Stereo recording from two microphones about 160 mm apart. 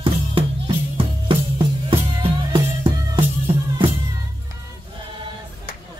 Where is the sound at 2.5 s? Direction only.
30° right (ahead or behind).